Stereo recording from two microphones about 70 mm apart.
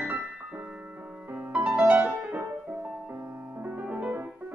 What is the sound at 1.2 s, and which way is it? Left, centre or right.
Music, right.